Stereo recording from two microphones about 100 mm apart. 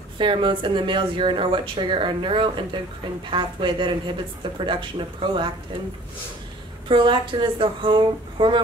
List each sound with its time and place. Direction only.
0.2 s speech: 55° right (ahead or behind)
6.9 s speech: 55° right (ahead or behind)